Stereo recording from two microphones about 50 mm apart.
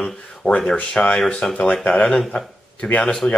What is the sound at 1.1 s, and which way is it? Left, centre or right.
Speech, centre.